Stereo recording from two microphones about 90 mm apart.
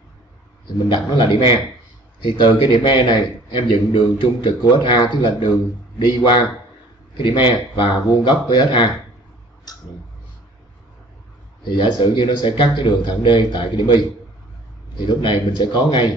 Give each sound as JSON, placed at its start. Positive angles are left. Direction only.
{"t": 0.8, "sound": "a man's voice", "side_deg": 65}
{"t": 11.6, "sound": "a man's voice", "side_deg": 60}